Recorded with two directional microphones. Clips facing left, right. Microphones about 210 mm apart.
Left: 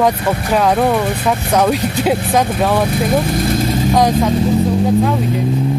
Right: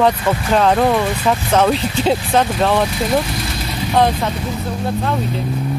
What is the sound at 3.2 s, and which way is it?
Vehicle, 55° left (ahead or behind).